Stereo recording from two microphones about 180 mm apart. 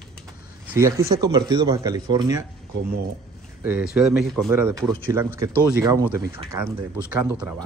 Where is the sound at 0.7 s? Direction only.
15° right (ahead or behind).